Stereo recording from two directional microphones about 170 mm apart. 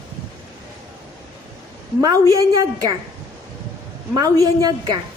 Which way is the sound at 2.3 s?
20° right (ahead or behind).